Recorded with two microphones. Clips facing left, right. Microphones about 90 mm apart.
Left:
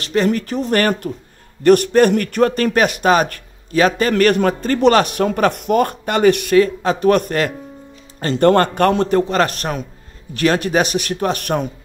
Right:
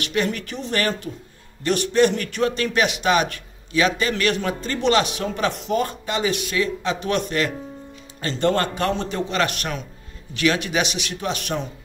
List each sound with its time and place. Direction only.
0.0 s a man's voice: 35° left (ahead or behind)